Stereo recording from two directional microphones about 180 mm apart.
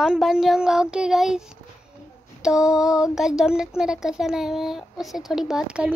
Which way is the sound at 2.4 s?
5° right (ahead or behind).